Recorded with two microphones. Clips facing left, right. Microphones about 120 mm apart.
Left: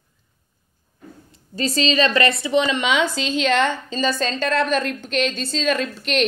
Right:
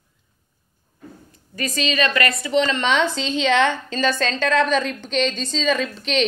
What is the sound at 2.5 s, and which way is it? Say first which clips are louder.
A woman's voice: right 2 dB; 15° left (ahead or behind).